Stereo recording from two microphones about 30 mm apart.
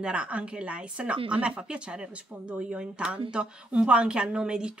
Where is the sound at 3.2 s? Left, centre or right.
Right.